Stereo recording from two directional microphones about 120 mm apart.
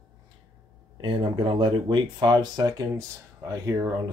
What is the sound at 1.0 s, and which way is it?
Speech, 45° right (ahead or behind).